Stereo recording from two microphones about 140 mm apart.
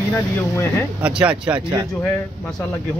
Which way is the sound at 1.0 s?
10° right (ahead or behind).